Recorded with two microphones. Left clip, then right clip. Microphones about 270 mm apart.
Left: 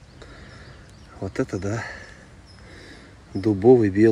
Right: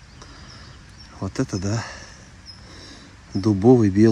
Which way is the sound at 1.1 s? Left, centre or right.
Centre.